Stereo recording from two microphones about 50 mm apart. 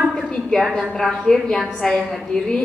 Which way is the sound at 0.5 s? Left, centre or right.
Centre.